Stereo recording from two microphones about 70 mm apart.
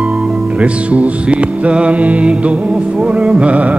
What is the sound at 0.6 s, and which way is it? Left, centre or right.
Music, centre.